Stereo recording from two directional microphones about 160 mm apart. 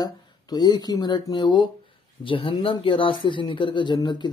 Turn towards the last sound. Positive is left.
turn(degrees=25)  # may be behind; listen again after turning